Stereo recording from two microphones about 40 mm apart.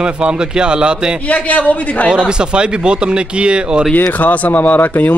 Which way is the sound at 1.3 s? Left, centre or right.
Left.